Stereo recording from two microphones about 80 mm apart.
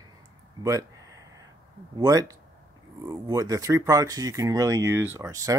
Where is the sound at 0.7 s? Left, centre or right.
Right.